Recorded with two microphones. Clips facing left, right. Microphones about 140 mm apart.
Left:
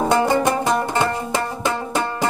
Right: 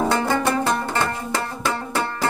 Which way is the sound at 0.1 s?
15° left (ahead or behind).